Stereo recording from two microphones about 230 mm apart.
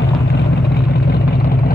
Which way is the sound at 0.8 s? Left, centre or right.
Left.